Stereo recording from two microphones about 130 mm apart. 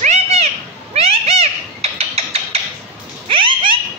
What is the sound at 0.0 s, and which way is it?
Children playing, 60° right (ahead or behind).